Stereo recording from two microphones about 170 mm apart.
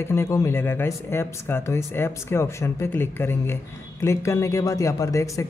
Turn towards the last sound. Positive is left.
turn(degrees=20)  # may be behind; listen again after turning